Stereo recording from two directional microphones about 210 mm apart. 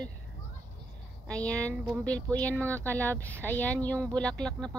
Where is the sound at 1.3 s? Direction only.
5° left (ahead or behind).